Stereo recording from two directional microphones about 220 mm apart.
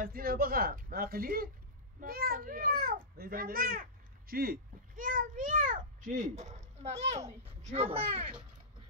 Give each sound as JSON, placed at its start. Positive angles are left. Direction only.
{"t": 0.0, "sound": "a child's voice", "side_deg": -40}